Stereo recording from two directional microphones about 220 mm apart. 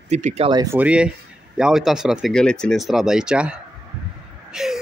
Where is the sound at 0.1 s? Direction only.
30° right (ahead or behind); by 3.5 s 5° right (ahead or behind).